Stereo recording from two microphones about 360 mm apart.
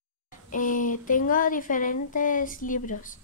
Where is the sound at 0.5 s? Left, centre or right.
Left.